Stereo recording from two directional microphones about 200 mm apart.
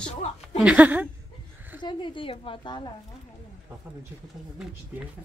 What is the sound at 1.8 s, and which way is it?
A woman's voice, 25° left (ahead or behind).